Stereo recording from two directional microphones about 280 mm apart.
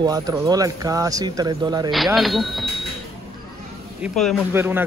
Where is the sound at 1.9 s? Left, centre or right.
Centre.